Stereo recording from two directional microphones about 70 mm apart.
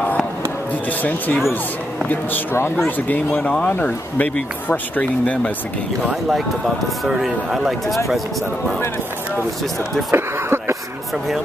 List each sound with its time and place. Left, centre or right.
1.0 s speech: left
2.5 s speech: left
3.1 s speech: left
7.1 s speech: centre
10.1 s a sound: right